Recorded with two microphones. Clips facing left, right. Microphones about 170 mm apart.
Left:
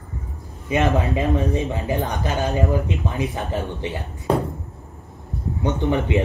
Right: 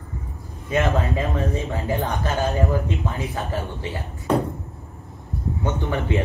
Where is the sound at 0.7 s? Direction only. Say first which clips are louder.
Left 2 dB; 20° left (ahead or behind).